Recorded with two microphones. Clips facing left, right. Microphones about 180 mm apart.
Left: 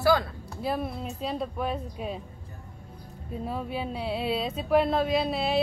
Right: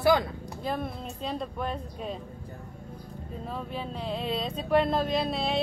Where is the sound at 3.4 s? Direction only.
10° left (ahead or behind).